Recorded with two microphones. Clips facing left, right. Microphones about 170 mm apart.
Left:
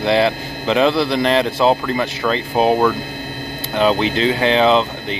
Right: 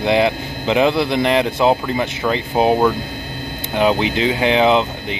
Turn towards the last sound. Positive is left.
turn(degrees=-15)  # may be behind; listen again after turning